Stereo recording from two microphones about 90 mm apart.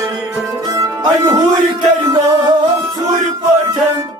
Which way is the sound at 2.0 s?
50° right (ahead or behind).